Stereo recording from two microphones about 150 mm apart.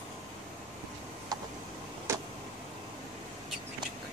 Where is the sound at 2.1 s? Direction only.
20° right (ahead or behind).